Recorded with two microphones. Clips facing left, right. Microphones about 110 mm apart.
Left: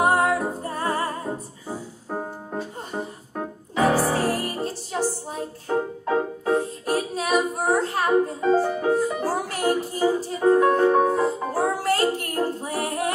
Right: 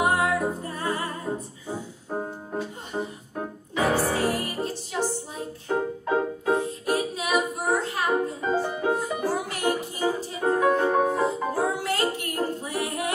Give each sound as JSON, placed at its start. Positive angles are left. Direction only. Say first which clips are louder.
{"t": 0.0, "sound": "music", "louder": "left 3 dB", "side_deg": 40}